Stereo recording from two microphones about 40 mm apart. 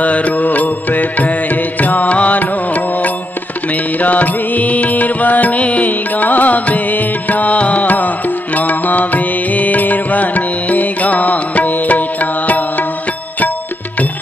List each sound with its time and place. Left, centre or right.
0.0 s music: left
7.8 s music: left